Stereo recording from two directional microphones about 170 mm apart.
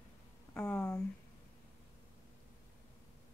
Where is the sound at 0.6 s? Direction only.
5° left (ahead or behind).